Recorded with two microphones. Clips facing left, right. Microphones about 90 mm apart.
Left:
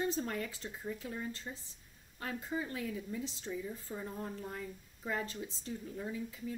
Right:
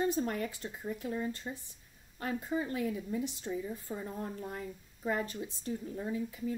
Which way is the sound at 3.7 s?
15° right (ahead or behind).